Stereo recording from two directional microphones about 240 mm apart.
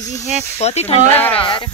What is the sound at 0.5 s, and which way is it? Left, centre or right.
Speech, left.